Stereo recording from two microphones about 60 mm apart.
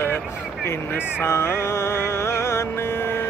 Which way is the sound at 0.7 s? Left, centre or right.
Left.